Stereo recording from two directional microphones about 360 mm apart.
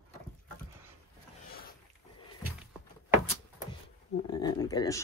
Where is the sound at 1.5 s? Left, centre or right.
Left.